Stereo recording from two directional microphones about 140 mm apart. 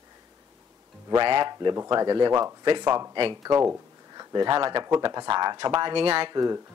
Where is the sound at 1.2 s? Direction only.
35° right (ahead or behind).